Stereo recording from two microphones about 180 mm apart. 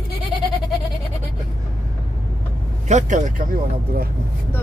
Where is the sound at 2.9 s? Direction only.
45° right (ahead or behind).